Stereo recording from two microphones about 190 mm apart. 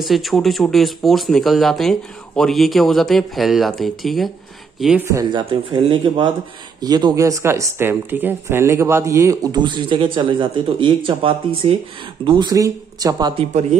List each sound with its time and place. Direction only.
0.0 s speech: centre (ahead or behind)
5.0 s speech: 15° right (ahead or behind)
5.4 s speech: 30° right (ahead or behind)
13.4 s speech: 35° right (ahead or behind)